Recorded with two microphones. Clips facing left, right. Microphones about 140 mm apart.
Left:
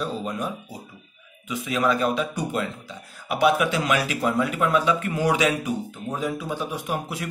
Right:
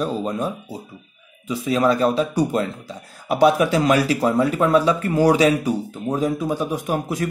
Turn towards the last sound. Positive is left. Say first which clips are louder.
# right 6 dB
turn(degrees=-40)  # may be behind; listen again after turning